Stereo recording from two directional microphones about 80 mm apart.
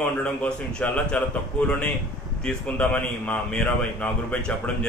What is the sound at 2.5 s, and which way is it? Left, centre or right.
A man's voice, centre.